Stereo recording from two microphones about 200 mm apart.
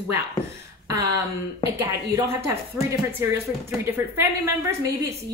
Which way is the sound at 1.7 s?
10° right (ahead or behind).